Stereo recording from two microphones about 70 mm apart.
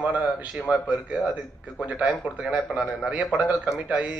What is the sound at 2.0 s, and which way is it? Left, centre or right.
A man's voice, centre.